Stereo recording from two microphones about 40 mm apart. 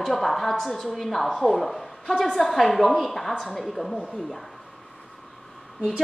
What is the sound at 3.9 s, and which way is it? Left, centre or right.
Speech, right.